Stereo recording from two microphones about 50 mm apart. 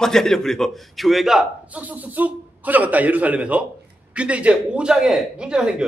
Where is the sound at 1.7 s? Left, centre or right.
Right.